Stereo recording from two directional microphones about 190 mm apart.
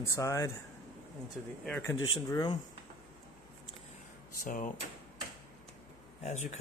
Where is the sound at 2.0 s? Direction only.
25° left (ahead or behind).